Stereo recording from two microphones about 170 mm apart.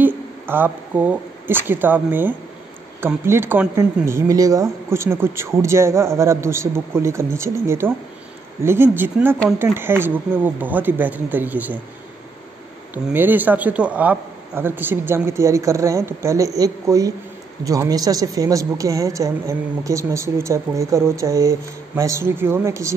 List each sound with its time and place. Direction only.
0.0 s speech: 10° right (ahead or behind)
12.9 s speech: 10° right (ahead or behind)